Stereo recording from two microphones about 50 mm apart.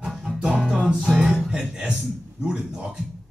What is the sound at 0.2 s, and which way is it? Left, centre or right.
Music, centre.